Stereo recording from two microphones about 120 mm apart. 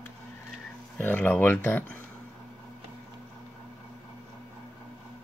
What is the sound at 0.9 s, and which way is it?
Speech, 15° left (ahead or behind).